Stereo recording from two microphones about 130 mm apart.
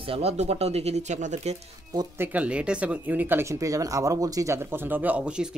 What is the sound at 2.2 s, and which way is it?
Speech, 10° right (ahead or behind).